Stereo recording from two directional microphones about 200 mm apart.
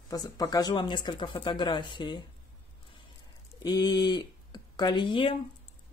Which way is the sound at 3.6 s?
20° left (ahead or behind).